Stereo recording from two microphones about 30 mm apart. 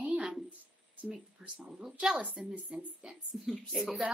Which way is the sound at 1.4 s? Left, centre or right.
Centre.